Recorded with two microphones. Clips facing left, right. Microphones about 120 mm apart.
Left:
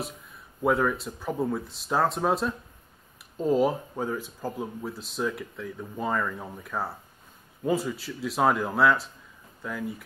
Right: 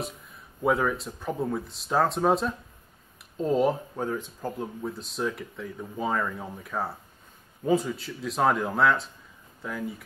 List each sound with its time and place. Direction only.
0.6 s speech: centre (ahead or behind)